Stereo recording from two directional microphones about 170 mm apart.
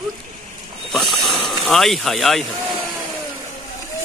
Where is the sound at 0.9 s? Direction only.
Centre (ahead or behind).